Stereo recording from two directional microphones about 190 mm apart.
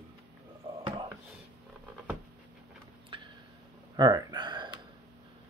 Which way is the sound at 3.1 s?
25° right (ahead or behind).